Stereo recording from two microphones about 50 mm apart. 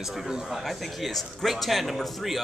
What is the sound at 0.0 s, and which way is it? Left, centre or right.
Speech, centre.